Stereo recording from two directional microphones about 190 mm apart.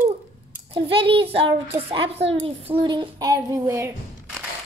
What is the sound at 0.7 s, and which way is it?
A child's voice, 30° right (ahead or behind).